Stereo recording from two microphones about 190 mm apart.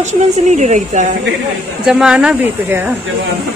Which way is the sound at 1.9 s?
5° right (ahead or behind).